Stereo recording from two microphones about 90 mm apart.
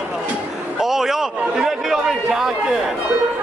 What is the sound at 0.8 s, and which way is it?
A man's voice, 5° right (ahead or behind).